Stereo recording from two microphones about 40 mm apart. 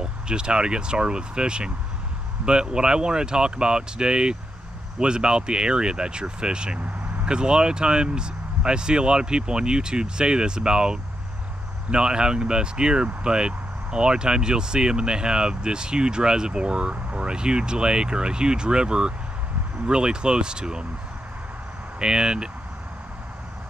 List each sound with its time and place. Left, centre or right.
0.0 s speech: right
22.0 s speech: right